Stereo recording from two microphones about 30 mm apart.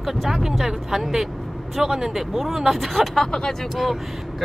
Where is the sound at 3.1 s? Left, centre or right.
Centre.